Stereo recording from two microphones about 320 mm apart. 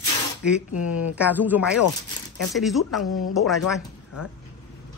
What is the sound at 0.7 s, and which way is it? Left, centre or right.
Speech, left.